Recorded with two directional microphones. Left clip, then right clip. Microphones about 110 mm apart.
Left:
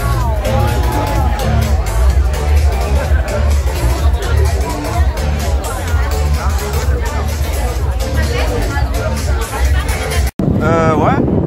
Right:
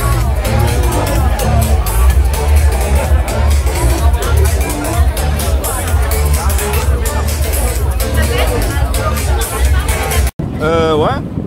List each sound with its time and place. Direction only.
10.6 s vehicle: 20° right (ahead or behind)